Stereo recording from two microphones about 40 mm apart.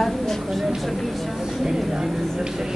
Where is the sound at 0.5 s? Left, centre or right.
Centre.